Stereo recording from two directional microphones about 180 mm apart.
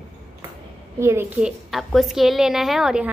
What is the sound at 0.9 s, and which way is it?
Speech, 15° right (ahead or behind).